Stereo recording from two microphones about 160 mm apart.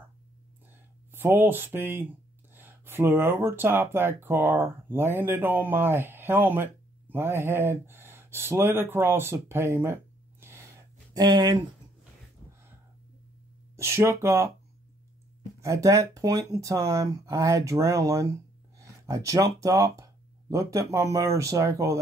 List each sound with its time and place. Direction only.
1.1 s speech: 15° right (ahead or behind)
11.1 s speech: 25° right (ahead or behind)
13.7 s speech: 15° right (ahead or behind)
15.6 s speech: 20° right (ahead or behind)